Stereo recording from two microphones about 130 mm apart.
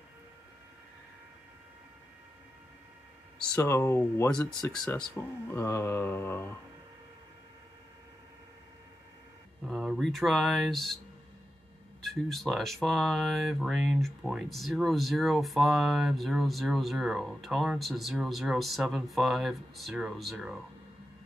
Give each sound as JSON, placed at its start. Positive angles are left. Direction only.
{"t": 3.3, "sound": "speech", "side_deg": 15}
{"t": 4.8, "sound": "speech", "side_deg": 5}
{"t": 5.1, "sound": "speech", "side_deg": 20}
{"t": 9.7, "sound": "speech", "side_deg": 0}
{"t": 12.0, "sound": "speech", "side_deg": 0}